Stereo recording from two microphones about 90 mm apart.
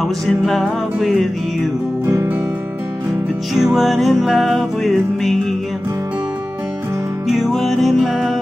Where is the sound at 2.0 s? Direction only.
25° right (ahead or behind).